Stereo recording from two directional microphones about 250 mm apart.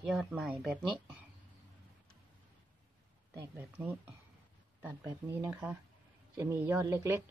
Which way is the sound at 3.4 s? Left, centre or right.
Centre.